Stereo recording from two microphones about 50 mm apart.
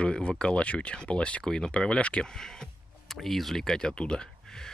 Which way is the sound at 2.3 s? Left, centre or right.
Centre.